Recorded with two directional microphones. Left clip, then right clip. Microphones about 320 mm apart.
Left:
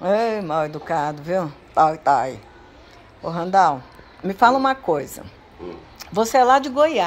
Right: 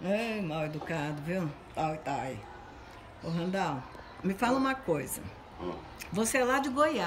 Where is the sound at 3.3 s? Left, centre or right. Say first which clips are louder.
Left 16 dB; centre.